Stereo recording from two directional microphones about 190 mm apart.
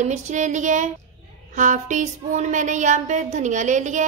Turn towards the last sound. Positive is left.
turn(degrees=-40)  # may be behind; listen again after turning